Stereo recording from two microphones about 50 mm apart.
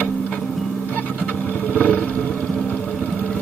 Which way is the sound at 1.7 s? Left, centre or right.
Left.